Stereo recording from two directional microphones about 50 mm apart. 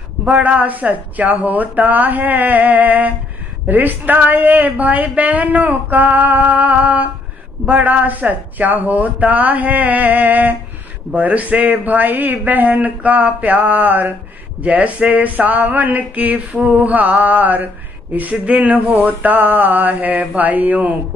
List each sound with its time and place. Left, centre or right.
0.2 s speech: right